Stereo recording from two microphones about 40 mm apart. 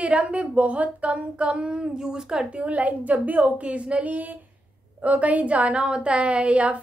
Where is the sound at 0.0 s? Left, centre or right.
Right.